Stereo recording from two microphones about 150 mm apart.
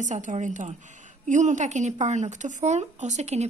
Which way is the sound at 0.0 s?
55° right (ahead or behind).